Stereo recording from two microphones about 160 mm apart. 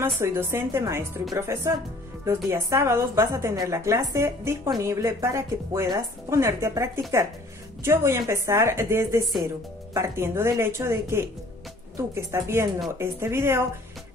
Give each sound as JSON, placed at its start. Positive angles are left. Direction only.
{"t": 0.0, "sound": "a woman's voice", "side_deg": -15}